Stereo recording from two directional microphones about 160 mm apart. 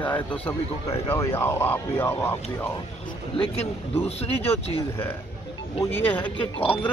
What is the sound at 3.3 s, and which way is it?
Speech, 35° left (ahead or behind).